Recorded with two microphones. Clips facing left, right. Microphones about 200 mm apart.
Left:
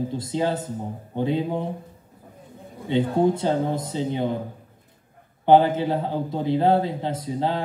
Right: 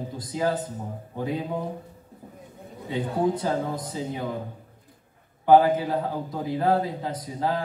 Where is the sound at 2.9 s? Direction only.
25° left (ahead or behind).